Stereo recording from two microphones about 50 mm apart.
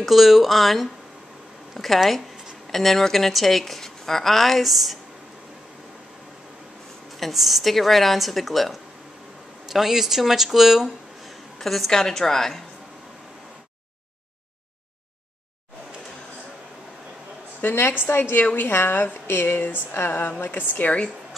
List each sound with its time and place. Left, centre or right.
0.0 s a woman's voice: centre
7.2 s a woman's voice: centre
17.6 s a woman's voice: left
18.7 s a woman's voice: left
20.2 s a woman's voice: left